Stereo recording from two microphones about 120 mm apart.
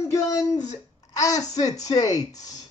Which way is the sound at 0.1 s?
30° left (ahead or behind).